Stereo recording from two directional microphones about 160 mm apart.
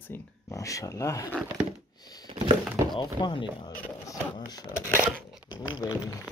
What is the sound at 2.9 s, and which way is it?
Speech, 30° left (ahead or behind).